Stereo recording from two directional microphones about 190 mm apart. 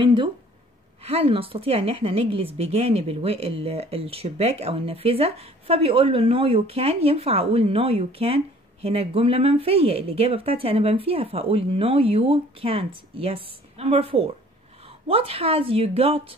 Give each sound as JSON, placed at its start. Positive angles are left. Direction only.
{"t": 0.0, "sound": "a woman's voice", "side_deg": -25}